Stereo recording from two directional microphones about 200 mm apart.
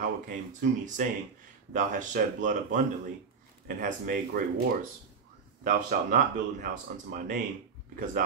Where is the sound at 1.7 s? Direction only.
40° right (ahead or behind).